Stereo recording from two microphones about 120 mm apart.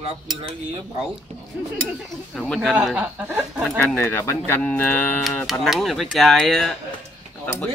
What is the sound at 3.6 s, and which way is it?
Speech, 5° left (ahead or behind).